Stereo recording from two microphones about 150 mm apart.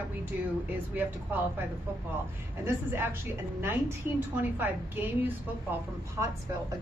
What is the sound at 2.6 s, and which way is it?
A woman's voice, 15° right (ahead or behind).